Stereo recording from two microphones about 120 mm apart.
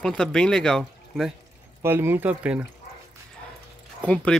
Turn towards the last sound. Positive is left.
turn(degrees=10)  # may be behind; listen again after turning